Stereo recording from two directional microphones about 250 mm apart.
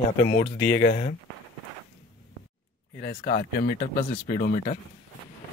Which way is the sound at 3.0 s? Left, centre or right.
Left.